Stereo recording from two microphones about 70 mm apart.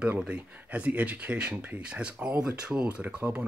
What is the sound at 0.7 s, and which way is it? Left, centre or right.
Speech, right.